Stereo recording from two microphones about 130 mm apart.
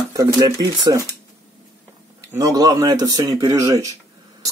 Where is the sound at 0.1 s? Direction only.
25° right (ahead or behind).